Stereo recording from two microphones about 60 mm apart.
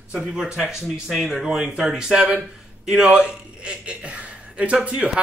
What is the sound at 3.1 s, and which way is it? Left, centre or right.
A man's voice, centre.